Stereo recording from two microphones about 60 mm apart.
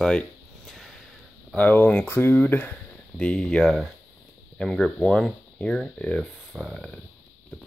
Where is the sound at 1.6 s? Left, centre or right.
Left.